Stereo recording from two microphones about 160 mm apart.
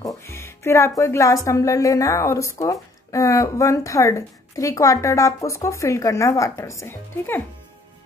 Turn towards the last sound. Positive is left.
turn(degrees=15)  # may be behind; listen again after turning